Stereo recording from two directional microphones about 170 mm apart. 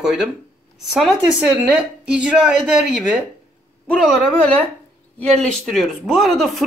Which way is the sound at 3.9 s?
5° left (ahead or behind).